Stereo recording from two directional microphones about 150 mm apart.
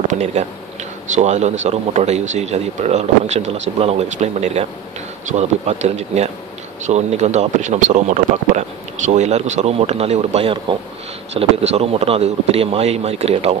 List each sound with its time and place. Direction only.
0.1 s speech: 50° right (ahead or behind)
5.7 s speech: 50° right (ahead or behind)